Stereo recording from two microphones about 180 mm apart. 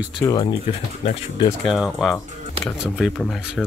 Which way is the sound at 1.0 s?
35° left (ahead or behind).